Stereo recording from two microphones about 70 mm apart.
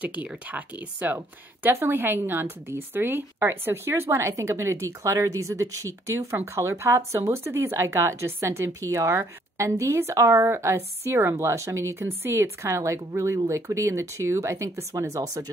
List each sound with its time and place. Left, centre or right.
0.0 s a woman's voice: right